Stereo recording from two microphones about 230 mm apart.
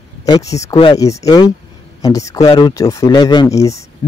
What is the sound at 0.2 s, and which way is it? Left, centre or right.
A man's voice, centre.